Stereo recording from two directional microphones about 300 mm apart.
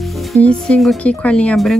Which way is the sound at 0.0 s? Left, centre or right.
Centre.